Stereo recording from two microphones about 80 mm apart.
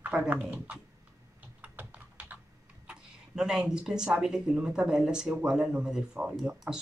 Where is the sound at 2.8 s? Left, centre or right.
Centre.